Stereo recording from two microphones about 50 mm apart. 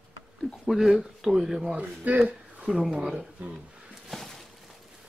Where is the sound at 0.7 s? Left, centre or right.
Centre.